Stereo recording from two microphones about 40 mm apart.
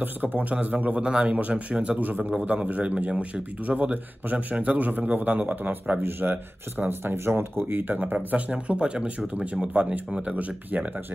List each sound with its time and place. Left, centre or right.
0.0 s a man's voice: right
0.9 s a man's voice: right
6.9 s speech: right
7.9 s a man's voice: right